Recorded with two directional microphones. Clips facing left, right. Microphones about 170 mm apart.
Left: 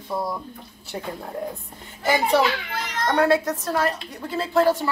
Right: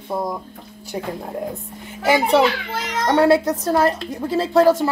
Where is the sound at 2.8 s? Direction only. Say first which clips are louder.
Right 5 dB; 90° right.